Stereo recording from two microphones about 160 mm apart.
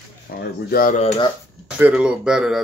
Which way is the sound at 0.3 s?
70° left (ahead or behind).